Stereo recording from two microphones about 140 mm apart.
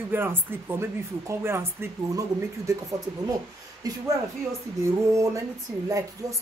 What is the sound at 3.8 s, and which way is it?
Speech, 25° right (ahead or behind).